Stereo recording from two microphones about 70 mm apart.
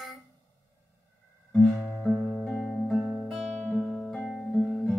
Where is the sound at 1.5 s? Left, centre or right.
Centre.